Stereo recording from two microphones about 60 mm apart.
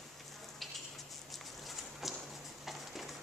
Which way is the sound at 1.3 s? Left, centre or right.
Centre.